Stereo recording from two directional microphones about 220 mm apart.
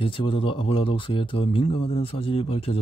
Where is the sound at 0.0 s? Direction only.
25° left (ahead or behind).